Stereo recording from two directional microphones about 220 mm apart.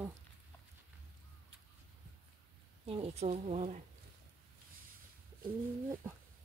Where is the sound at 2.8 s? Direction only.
25° right (ahead or behind).